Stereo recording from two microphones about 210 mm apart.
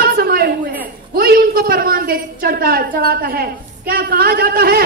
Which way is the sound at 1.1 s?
45° right (ahead or behind).